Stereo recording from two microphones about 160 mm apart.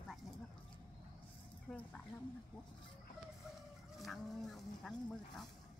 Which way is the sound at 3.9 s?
Centre (ahead or behind).